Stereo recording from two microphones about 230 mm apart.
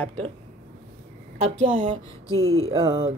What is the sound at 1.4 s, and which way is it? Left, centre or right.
Speech, right.